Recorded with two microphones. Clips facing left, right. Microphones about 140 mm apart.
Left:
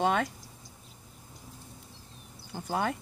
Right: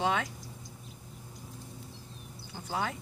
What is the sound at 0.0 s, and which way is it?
Speech, 50° left (ahead or behind).